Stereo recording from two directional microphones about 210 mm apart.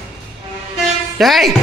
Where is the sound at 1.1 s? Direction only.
Centre (ahead or behind).